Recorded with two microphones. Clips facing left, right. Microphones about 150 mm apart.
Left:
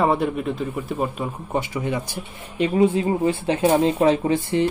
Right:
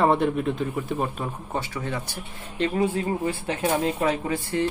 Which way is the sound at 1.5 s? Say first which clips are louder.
Left 7 dB; 15° left (ahead or behind).